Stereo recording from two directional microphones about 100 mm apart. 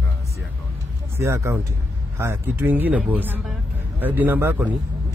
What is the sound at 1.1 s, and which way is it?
Speech, 30° right (ahead or behind).